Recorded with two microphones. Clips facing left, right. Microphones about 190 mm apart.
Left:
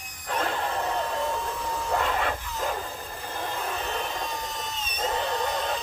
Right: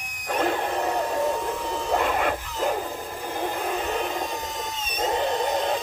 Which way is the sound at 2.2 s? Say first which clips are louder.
Right 4 dB; 15° right (ahead or behind).